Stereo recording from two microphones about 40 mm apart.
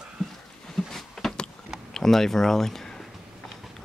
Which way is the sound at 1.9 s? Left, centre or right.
Centre.